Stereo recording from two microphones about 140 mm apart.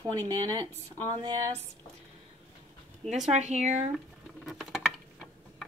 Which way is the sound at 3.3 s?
55° right (ahead or behind).